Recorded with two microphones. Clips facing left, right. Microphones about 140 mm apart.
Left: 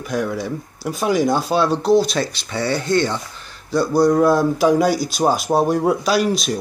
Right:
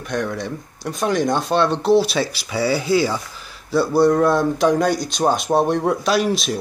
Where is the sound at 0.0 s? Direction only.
5° left (ahead or behind).